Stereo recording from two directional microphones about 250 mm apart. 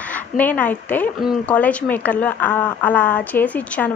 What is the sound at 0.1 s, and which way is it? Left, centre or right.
A woman's voice, centre.